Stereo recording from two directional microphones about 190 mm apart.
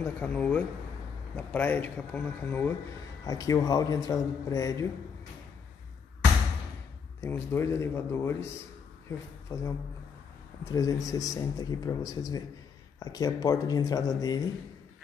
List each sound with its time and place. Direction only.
0.0 s speech: 10° left (ahead or behind)
7.2 s speech: 15° left (ahead or behind)